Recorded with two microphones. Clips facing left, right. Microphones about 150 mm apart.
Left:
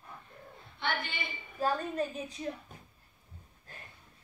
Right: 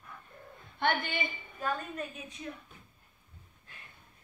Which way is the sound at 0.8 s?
50° right (ahead or behind).